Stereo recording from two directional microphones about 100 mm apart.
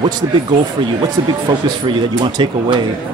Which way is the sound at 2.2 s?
50° right (ahead or behind).